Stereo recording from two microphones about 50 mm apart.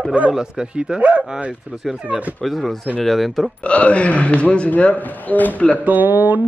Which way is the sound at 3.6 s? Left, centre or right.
Left.